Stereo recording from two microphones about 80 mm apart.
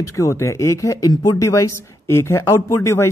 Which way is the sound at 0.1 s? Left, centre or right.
Left.